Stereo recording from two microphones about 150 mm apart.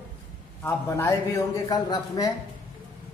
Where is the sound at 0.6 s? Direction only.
15° left (ahead or behind).